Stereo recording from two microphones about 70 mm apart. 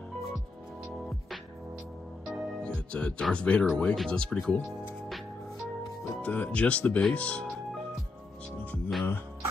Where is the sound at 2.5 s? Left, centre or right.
Centre.